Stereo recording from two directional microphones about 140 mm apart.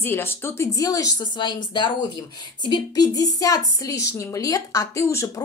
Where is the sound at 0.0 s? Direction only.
15° left (ahead or behind).